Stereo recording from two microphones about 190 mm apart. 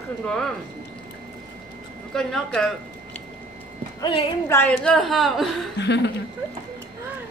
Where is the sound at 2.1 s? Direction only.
5° left (ahead or behind).